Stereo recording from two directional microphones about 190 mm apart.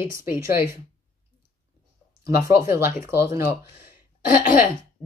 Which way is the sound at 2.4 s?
15° right (ahead or behind).